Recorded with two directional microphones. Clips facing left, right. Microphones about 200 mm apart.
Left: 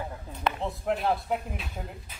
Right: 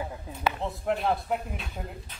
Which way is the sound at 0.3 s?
5° right (ahead or behind).